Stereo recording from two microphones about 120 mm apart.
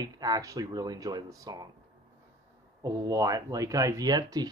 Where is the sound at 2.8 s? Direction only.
25° right (ahead or behind).